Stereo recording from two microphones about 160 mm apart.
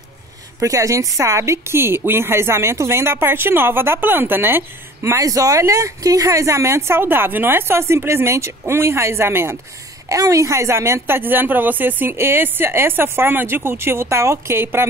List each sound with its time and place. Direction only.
0.6 s a woman's voice: 20° right (ahead or behind)